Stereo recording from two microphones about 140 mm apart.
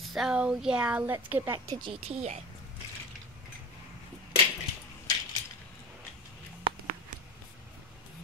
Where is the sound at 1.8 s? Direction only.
40° right (ahead or behind).